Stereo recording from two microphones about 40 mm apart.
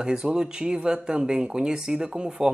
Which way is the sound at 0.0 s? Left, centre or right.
Centre.